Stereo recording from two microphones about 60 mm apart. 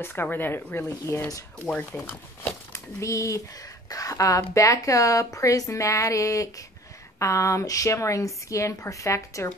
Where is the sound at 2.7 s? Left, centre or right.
Left.